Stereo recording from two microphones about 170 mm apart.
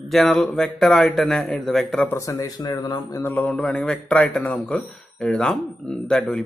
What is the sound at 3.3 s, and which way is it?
Speech, 10° left (ahead or behind).